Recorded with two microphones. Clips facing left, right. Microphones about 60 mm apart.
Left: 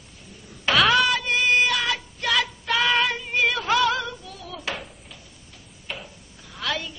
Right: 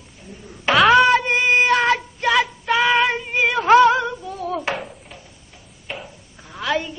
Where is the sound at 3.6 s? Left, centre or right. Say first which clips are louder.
Right 9 dB; right.